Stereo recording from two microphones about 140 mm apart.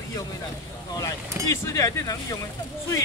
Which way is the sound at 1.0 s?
20° left (ahead or behind).